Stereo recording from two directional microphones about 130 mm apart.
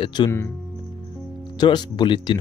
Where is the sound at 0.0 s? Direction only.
35° left (ahead or behind).